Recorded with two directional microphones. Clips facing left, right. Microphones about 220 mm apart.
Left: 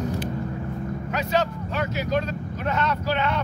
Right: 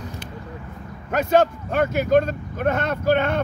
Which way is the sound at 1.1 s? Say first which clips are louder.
Right 7 dB; 50° right (ahead or behind).